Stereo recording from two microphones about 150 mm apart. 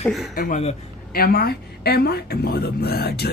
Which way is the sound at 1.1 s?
90° left.